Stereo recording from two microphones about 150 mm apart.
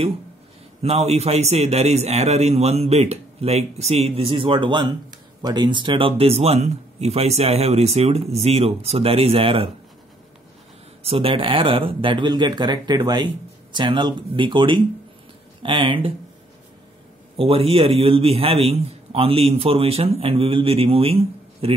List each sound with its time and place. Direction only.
0.8 s speech: 45° right (ahead or behind)
11.1 s a man's voice: 40° right (ahead or behind)
17.4 s a man's voice: 40° right (ahead or behind)